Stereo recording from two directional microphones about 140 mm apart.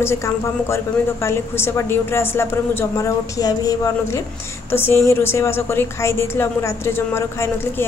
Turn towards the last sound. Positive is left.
turn(degrees=20)  # may be behind; listen again after turning